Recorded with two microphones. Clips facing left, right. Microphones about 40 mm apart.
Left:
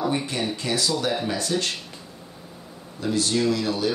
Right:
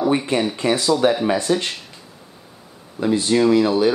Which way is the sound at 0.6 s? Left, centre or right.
Right.